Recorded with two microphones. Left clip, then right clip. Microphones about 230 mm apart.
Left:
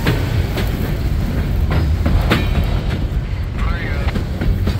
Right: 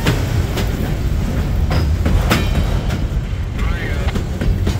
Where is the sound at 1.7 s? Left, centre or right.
Right.